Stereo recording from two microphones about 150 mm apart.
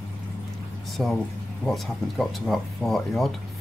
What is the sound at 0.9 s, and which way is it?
Speech, centre (ahead or behind).